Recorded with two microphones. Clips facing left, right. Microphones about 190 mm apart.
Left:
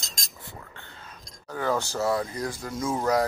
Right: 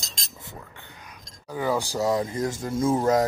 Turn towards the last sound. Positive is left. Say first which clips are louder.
# right 4 dB
turn(degrees=-25)  # may be behind; listen again after turning